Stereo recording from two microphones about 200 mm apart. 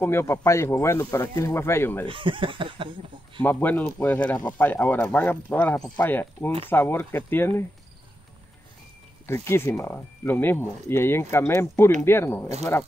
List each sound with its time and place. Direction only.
0.0 s speech: 15° left (ahead or behind)
2.0 s speech: 25° right (ahead or behind)
3.4 s speech: 10° left (ahead or behind)
9.2 s speech: 10° left (ahead or behind)